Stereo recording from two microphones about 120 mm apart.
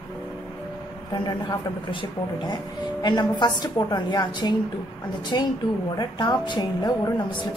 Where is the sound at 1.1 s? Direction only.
35° left (ahead or behind).